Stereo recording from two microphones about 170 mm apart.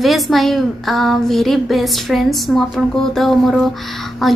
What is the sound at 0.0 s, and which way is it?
Speech, centre (ahead or behind).